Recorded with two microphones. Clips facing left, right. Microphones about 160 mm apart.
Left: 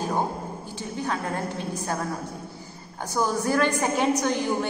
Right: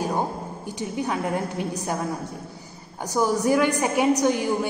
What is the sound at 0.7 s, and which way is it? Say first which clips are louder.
A woman's voice: right 3 dB; 15° right (ahead or behind).